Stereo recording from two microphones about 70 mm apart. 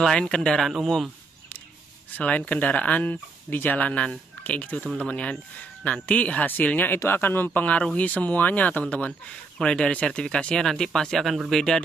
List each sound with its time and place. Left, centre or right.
0.0 s speech: centre
2.1 s speech: centre